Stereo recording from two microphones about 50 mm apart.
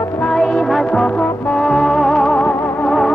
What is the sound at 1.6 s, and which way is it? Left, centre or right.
Music, centre.